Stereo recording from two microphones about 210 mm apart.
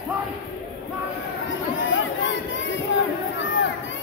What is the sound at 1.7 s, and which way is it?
Speech, 65° left (ahead or behind).